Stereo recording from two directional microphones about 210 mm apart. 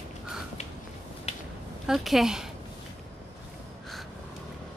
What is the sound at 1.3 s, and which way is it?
Finger snapping, 30° left (ahead or behind).